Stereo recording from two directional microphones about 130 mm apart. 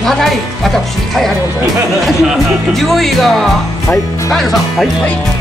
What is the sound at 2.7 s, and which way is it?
Speech, centre (ahead or behind).